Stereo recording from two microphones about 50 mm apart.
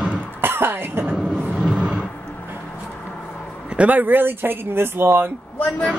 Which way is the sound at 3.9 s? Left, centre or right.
Right.